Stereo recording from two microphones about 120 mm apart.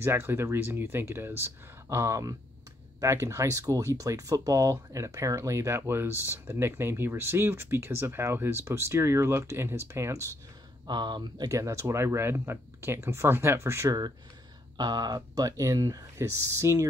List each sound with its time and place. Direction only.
0.0 s speech: 20° right (ahead or behind)
10.9 s speech: 40° right (ahead or behind)
11.5 s speech: 25° right (ahead or behind)
14.8 s speech: 35° right (ahead or behind)